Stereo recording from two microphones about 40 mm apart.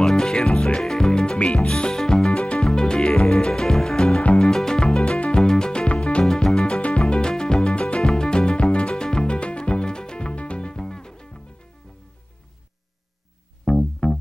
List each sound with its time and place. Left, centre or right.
0.0 s music: centre
0.7 s music: centre
13.7 s music: centre